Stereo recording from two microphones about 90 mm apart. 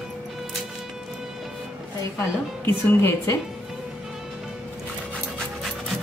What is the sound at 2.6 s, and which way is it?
Speech, 25° left (ahead or behind).